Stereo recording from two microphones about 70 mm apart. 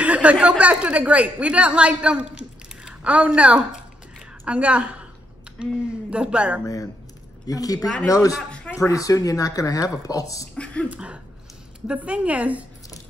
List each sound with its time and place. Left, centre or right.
0.0 s speech: centre
6.6 s speech: left
7.4 s speech: left
8.5 s a sound: centre
8.7 s speech: left
10.5 s speech: centre
10.9 s a woman's voice: centre